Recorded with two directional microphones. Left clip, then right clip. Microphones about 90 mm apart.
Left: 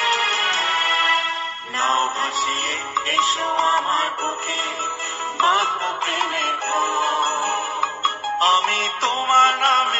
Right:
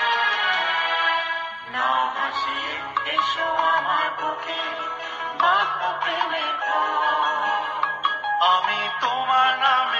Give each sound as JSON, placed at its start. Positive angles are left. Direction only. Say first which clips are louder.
{"t": 0.0, "sound": "music", "louder": "left 2 dB", "side_deg": 25}
{"t": 3.1, "sound": "music", "louder": "left 4 dB", "side_deg": 25}
{"t": 5.4, "sound": "music", "louder": "left 1 dB", "side_deg": 25}